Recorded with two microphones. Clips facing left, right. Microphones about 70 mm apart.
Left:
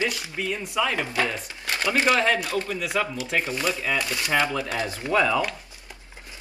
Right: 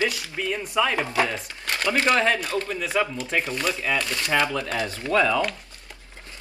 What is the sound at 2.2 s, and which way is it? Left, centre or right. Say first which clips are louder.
A man's voice: even; centre.